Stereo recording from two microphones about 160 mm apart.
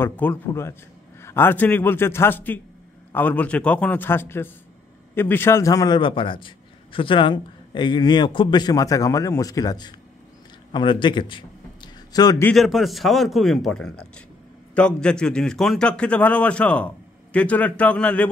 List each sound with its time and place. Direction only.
0.0 s a man's voice: 10° left (ahead or behind)
12.4 s a man's voice: centre (ahead or behind)